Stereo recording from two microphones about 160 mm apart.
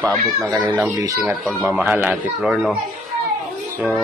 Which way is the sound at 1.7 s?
5° right (ahead or behind).